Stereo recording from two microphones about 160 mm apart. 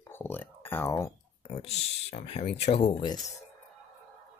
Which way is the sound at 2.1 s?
40° left (ahead or behind).